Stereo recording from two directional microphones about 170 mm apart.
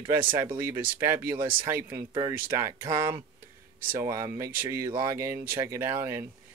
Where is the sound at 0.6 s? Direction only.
15° right (ahead or behind).